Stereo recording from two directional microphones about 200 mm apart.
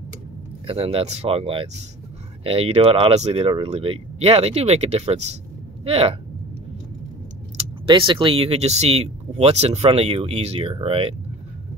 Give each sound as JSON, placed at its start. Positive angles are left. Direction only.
{"t": 0.7, "sound": "speech", "side_deg": -30}
{"t": 7.8, "sound": "speech", "side_deg": -25}